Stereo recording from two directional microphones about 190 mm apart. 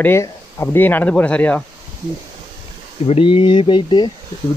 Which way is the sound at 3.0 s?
30° left (ahead or behind).